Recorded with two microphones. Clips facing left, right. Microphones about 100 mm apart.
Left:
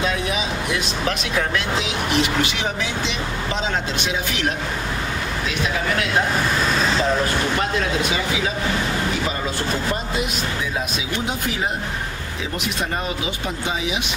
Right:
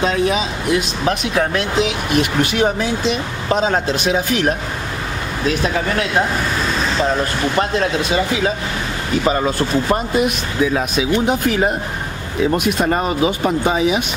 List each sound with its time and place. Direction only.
1.3 s speech: 50° right (ahead or behind)
10.7 s speech: 55° right (ahead or behind)